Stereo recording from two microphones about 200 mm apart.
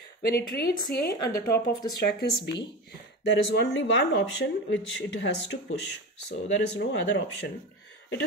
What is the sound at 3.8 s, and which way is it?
A woman's voice, 65° left (ahead or behind).